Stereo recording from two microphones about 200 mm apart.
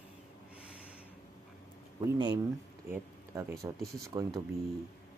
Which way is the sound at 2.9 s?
15° right (ahead or behind).